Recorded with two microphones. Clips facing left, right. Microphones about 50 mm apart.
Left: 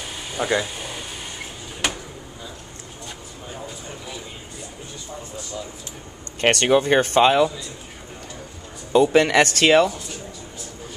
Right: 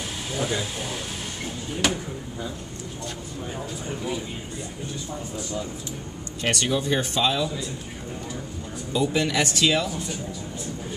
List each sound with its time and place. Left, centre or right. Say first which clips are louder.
0.4 s speech: left 5 dB; centre
0.7 s power windows: right 1 dB; centre
6.4 s speech: left 7 dB; left
8.9 s speech: left 8 dB; left